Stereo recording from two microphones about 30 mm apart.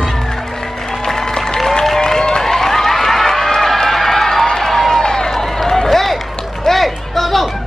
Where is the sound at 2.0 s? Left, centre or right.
Left.